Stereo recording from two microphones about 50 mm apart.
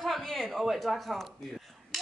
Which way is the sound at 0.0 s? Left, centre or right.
Centre.